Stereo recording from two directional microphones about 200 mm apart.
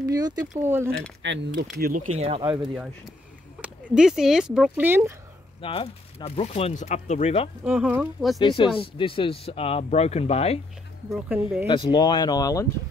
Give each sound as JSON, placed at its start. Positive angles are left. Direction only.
{"t": 0.1, "sound": "speech", "side_deg": -20}
{"t": 1.2, "sound": "speech", "side_deg": -60}
{"t": 2.1, "sound": "speech", "side_deg": -30}
{"t": 3.6, "sound": "speech", "side_deg": -5}
{"t": 5.6, "sound": "speech", "side_deg": 25}
{"t": 7.6, "sound": "speech", "side_deg": -5}
{"t": 8.4, "sound": "speech", "side_deg": 25}
{"t": 11.1, "sound": "speech", "side_deg": -5}
{"t": 11.6, "sound": "speech", "side_deg": 25}